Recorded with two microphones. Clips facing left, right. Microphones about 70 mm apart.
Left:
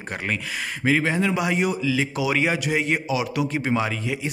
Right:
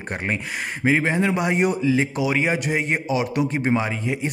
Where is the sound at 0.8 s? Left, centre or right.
Right.